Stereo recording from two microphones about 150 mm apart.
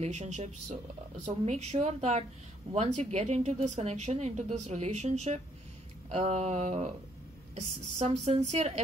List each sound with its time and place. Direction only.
0.0 s a woman's voice: 45° right (ahead or behind)